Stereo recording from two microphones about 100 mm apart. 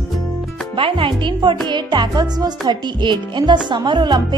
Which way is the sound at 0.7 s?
60° right (ahead or behind).